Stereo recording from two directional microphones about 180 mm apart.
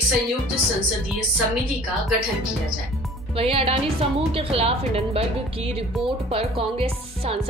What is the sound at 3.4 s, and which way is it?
Speech, 30° right (ahead or behind).